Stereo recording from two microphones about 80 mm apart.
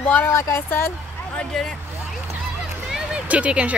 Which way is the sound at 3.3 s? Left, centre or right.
Centre.